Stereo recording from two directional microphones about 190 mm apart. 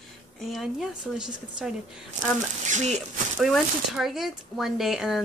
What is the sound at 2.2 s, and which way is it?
Speech, 40° right (ahead or behind).